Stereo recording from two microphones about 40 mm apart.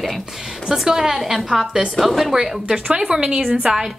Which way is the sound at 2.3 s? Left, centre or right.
Centre.